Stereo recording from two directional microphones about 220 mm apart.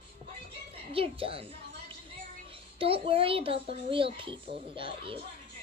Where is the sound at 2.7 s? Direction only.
25° right (ahead or behind).